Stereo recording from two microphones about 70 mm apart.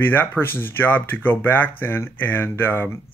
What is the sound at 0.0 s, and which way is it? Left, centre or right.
Speech, left.